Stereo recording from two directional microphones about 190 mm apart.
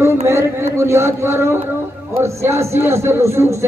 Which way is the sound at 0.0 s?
15° right (ahead or behind).